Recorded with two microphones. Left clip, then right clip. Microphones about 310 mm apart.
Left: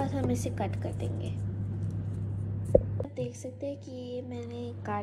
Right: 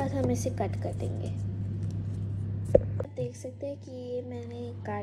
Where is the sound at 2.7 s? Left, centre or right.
Left.